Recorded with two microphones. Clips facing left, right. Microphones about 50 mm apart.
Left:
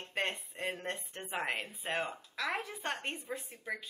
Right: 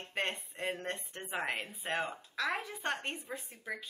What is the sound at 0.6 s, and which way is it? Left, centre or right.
Speech, centre.